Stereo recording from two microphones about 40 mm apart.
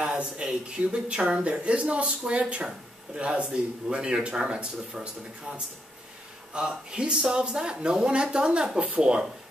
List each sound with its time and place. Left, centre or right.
0.0 s speech: right
5.0 s speech: centre
6.5 s speech: right